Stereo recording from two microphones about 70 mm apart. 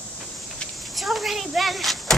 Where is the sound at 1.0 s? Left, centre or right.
Centre.